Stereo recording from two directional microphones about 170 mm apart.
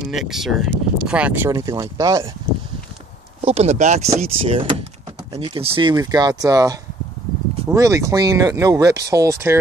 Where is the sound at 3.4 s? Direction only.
40° right (ahead or behind); by 6.7 s 20° right (ahead or behind).